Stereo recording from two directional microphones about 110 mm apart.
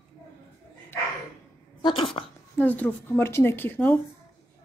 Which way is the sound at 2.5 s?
15° left (ahead or behind).